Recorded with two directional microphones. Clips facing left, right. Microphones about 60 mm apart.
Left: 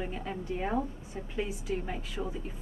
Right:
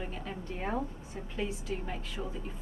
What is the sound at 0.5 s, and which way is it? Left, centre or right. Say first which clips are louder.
A woman's voice: left 3 dB; centre.